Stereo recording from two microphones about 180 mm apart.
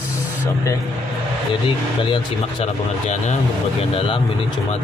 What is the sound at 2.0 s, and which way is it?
Speech, 30° left (ahead or behind).